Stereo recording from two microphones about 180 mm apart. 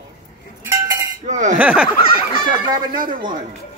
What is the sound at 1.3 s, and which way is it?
Speech, 45° right (ahead or behind).